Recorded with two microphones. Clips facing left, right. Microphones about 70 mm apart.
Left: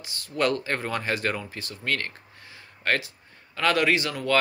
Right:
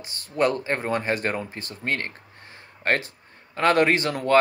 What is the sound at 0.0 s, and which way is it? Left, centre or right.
Speech, right.